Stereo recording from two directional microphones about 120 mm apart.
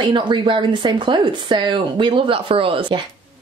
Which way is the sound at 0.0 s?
40° right (ahead or behind).